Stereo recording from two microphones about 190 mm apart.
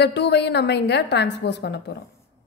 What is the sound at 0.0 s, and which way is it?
A woman's voice, 60° left (ahead or behind).